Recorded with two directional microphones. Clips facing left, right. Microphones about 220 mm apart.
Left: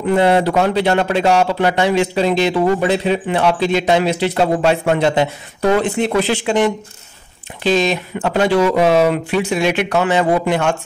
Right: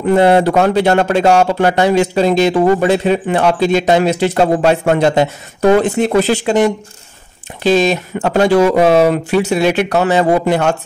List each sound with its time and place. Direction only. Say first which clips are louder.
0.1 s speech: right 4 dB; 45° right (ahead or behind)